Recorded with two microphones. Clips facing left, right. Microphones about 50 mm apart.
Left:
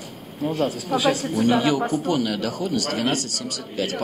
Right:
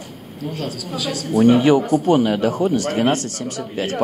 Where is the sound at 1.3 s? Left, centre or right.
Right.